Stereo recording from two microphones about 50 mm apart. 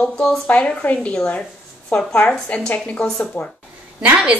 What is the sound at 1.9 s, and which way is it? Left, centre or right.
A woman's voice, left.